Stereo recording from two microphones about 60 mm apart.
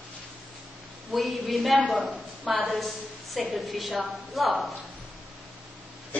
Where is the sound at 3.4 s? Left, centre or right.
Centre.